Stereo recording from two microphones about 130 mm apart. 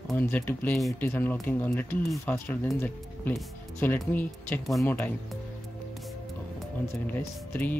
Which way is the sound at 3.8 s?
15° left (ahead or behind).